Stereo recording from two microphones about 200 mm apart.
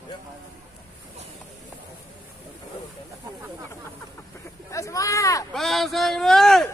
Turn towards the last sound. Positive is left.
turn(degrees=0)  # may be behind; listen again after turning